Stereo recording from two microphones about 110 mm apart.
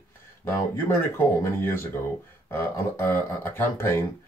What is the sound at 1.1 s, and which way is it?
Speech, 20° left (ahead or behind).